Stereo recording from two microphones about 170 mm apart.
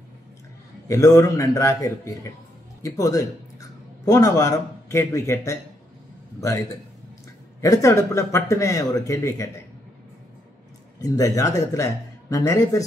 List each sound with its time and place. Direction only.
0.8 s speech: 20° left (ahead or behind)
11.0 s speech: 20° left (ahead or behind)